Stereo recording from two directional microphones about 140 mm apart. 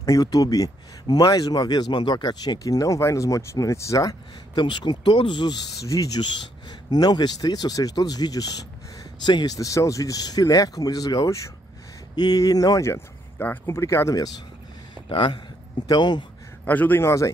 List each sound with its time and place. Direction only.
0.0 s speech: 25° left (ahead or behind)
15.0 s speech: 40° left (ahead or behind)
16.6 s a man's voice: 10° left (ahead or behind)